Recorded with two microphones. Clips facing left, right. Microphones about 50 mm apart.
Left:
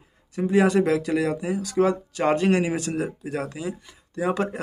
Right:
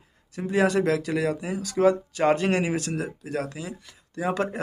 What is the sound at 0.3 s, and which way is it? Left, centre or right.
A man's voice, centre.